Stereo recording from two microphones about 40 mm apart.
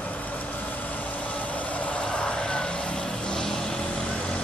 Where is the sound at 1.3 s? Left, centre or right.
Left; by 4.0 s centre.